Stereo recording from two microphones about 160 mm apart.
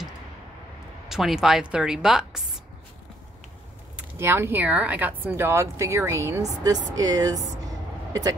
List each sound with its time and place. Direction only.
1.0 s speech: centre (ahead or behind)
3.9 s speech: 15° right (ahead or behind)
7.6 s a sound: 20° right (ahead or behind)